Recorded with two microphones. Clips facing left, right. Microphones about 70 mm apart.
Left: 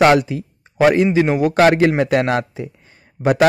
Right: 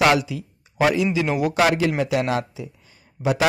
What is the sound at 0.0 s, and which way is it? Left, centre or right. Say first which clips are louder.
A man's voice: left 5 dB; left.